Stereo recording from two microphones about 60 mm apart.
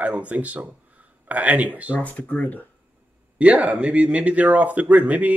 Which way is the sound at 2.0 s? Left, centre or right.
Left.